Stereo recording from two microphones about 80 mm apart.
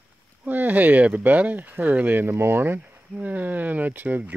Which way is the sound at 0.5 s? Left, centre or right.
Right.